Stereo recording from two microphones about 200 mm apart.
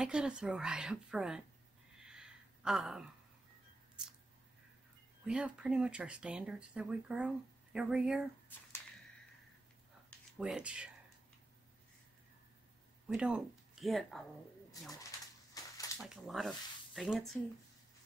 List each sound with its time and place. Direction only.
0.0 s speech: 5° right (ahead or behind)
2.0 s a sound: 5° right (ahead or behind)
5.2 s speech: 5° right (ahead or behind)
10.3 s speech: 5° right (ahead or behind)
13.1 s speech: 5° right (ahead or behind)
14.9 s a sound: 15° left (ahead or behind)
16.0 s speech: centre (ahead or behind)